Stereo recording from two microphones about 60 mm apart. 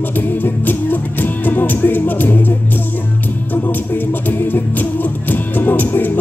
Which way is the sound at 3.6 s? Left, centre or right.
Left.